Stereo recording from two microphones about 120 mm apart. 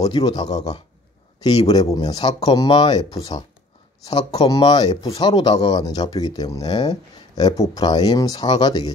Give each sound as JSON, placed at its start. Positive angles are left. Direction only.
{"t": 0.0, "sound": "speech", "side_deg": 35}
{"t": 1.7, "sound": "speech", "side_deg": 35}